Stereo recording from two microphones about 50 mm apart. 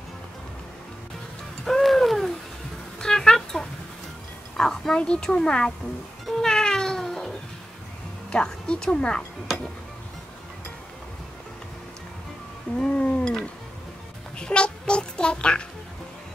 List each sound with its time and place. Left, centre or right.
1.6 s music: centre
3.0 s a sound: centre
4.6 s music: centre
4.9 s speech: centre
6.2 s cat: centre
8.3 s music: centre
12.7 s cat: centre
14.4 s a sound: centre